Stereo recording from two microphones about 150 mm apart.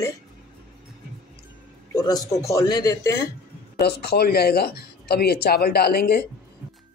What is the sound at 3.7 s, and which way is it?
Speech, 90° left.